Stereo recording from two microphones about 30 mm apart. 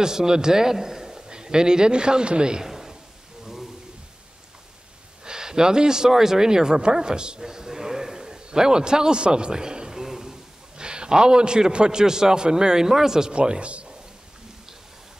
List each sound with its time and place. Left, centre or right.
0.0 s a man's voice: right
2.6 s a sound: centre
5.2 s speech: right
9.9 s a sound: centre
10.8 s a man's voice: right
13.3 s a man's voice: right